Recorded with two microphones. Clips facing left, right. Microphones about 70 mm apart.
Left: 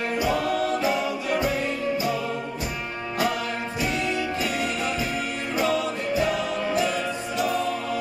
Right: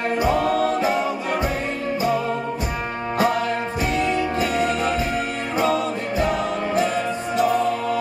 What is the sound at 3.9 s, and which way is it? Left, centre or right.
Music, right.